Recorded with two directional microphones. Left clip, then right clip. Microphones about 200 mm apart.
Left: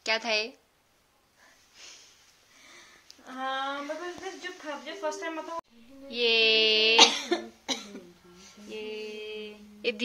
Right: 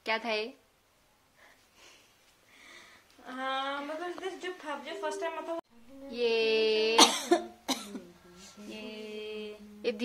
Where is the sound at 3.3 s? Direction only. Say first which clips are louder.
Left 1 dB; 15° right (ahead or behind).